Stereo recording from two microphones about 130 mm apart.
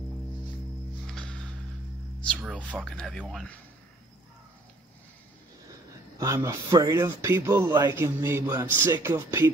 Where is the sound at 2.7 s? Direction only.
5° left (ahead or behind).